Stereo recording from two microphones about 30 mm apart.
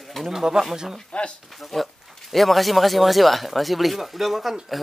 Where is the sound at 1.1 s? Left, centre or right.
Left.